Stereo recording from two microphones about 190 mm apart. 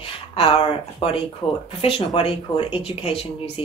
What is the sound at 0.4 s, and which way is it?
Speech, 30° left (ahead or behind).